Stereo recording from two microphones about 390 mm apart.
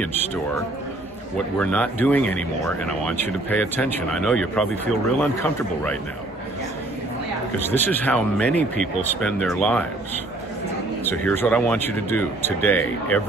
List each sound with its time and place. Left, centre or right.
1.6 s speech: centre
7.5 s speech: centre
11.1 s speech: centre